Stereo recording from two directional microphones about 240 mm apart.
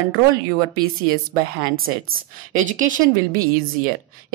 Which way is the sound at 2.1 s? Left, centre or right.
Right.